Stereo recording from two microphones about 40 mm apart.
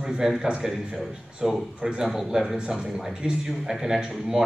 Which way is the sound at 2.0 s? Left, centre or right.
Centre.